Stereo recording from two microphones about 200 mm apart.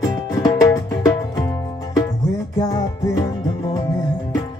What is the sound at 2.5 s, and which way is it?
Music, 15° left (ahead or behind).